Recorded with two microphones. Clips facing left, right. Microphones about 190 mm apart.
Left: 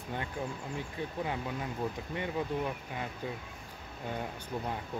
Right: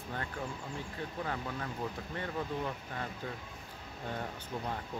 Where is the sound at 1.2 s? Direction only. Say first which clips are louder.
Left 2 dB; 15° left (ahead or behind).